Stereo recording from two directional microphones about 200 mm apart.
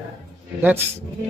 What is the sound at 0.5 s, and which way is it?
Speech, 10° right (ahead or behind).